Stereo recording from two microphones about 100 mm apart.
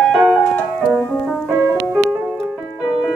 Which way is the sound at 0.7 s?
5° right (ahead or behind).